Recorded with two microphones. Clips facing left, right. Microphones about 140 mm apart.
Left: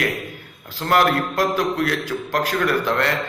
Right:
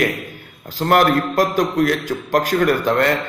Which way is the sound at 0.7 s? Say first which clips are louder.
Right 3 dB; 45° right (ahead or behind).